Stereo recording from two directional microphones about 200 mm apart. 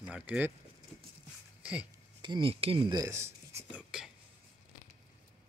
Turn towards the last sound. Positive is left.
turn(degrees=-5)  # may be behind; listen again after turning